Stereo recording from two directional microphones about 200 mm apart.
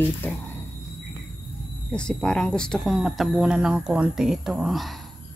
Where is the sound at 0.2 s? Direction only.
10° left (ahead or behind).